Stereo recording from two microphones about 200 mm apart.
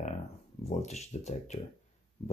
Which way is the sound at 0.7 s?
35° left (ahead or behind).